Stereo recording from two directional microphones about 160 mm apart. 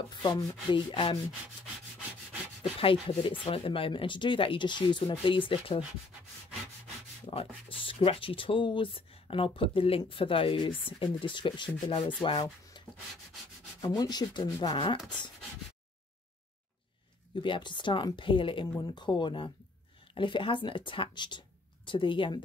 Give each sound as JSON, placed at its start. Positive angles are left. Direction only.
{"t": 0.2, "sound": "speech", "side_deg": 30}
{"t": 2.8, "sound": "speech", "side_deg": 35}
{"t": 7.2, "sound": "speech", "side_deg": 35}
{"t": 12.7, "sound": "rub", "side_deg": 30}
{"t": 13.7, "sound": "speech", "side_deg": 25}
{"t": 17.4, "sound": "speech", "side_deg": 30}